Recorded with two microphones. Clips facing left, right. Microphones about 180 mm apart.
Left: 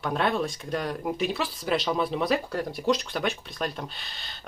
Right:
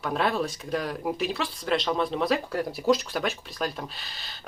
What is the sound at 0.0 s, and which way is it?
Speech, centre (ahead or behind).